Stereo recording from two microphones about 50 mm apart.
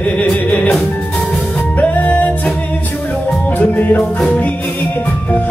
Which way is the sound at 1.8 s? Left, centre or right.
Left.